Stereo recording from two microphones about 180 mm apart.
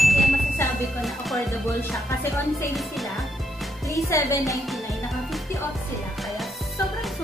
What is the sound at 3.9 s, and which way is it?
Speech, 15° left (ahead or behind).